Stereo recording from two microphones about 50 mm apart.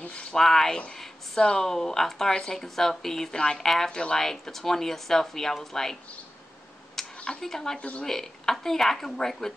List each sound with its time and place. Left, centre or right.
0.0 s a sound: left
0.4 s speech: centre
7.2 s speech: centre